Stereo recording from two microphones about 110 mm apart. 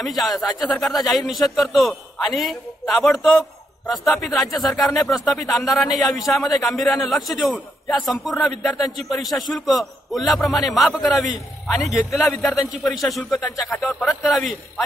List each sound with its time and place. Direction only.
0.0 s a man's voice: centre (ahead or behind)